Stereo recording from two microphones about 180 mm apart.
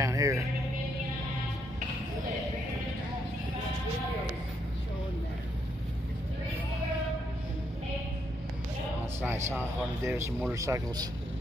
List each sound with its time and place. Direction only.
0.0 s music: 20° right (ahead or behind)
9.5 s a man's voice: 15° right (ahead or behind)